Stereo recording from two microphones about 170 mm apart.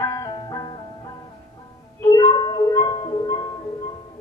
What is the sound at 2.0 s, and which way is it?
Music, 25° left (ahead or behind).